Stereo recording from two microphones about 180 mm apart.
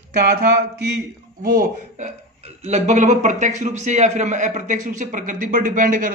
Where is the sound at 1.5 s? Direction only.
40° right (ahead or behind).